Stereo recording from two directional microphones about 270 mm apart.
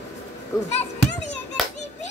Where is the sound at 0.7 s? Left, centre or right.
Left.